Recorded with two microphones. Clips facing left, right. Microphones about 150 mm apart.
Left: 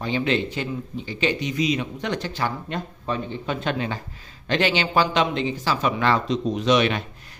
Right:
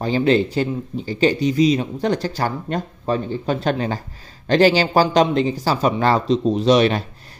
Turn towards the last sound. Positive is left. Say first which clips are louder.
# right 5 dB
turn(degrees=-35)  # may be behind; listen again after turning